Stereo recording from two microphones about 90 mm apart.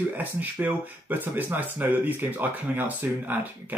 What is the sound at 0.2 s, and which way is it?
Speech, 20° right (ahead or behind).